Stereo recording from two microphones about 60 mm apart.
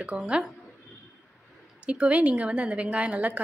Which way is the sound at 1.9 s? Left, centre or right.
Right.